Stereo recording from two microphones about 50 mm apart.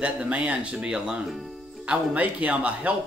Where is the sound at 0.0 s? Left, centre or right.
Right.